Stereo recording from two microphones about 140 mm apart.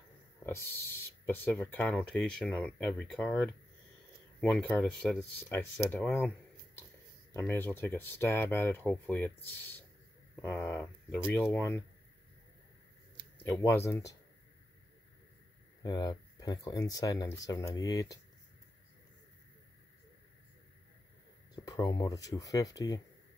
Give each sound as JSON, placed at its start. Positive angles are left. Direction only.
{"t": 0.5, "sound": "speech", "side_deg": 20}
{"t": 4.4, "sound": "speech", "side_deg": 10}
{"t": 13.4, "sound": "speech", "side_deg": 20}
{"t": 15.8, "sound": "speech", "side_deg": 25}
{"t": 21.5, "sound": "speech", "side_deg": 25}